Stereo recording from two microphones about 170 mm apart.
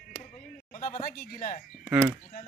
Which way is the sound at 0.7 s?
50° left (ahead or behind).